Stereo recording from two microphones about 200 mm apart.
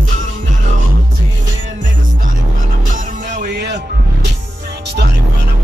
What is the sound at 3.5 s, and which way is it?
Music, 55° right (ahead or behind).